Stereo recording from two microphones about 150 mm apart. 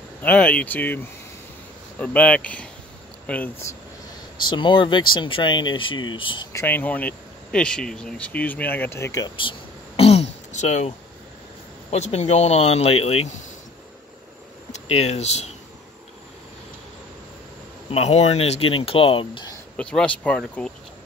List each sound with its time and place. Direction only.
0.2 s speech: 10° left (ahead or behind)
4.5 s speech: 30° left (ahead or behind)
6.5 s speech: 15° left (ahead or behind)
9.4 s throat clearing: 35° left (ahead or behind)
11.9 s speech: 50° left (ahead or behind)
14.7 s speech: 45° left (ahead or behind)
17.9 s speech: 45° left (ahead or behind)
19.8 s speech: 5° left (ahead or behind)